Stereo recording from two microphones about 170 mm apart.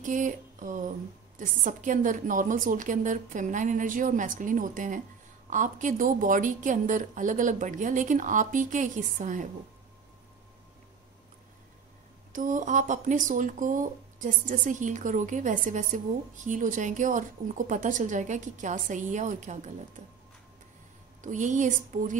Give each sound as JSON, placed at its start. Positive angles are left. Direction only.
{"t": 0.0, "sound": "a sound", "side_deg": -50}
{"t": 1.4, "sound": "speech", "side_deg": -50}
{"t": 12.3, "sound": "speech", "side_deg": -50}
{"t": 21.2, "sound": "speech", "side_deg": -45}